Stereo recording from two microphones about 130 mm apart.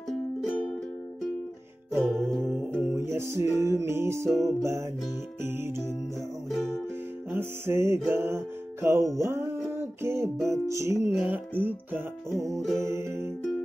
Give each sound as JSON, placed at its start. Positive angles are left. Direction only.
{"t": 2.1, "sound": "music", "side_deg": 0}
{"t": 2.9, "sound": "music", "side_deg": -20}
{"t": 6.5, "sound": "music", "side_deg": 5}
{"t": 7.2, "sound": "music", "side_deg": -20}